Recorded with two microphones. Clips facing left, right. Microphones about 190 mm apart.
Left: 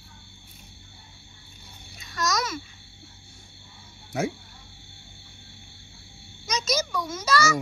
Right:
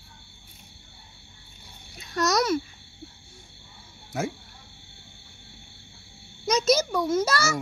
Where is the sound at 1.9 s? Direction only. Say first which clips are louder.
Right 5 dB; 60° right (ahead or behind).